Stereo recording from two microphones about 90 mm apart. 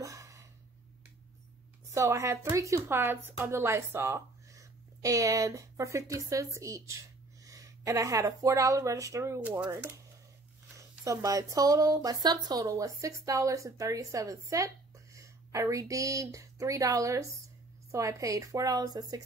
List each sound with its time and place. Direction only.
0.0 s a sound: 35° right (ahead or behind)
1.9 s speech: 35° right (ahead or behind)
10.8 s speech: 40° right (ahead or behind)